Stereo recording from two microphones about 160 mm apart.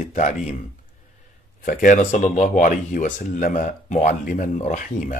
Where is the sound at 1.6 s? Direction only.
60° left (ahead or behind).